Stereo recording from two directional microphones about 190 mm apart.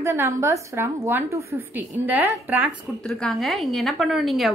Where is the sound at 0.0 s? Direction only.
15° right (ahead or behind).